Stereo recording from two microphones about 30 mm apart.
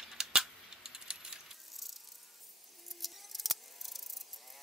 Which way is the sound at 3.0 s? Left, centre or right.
Centre.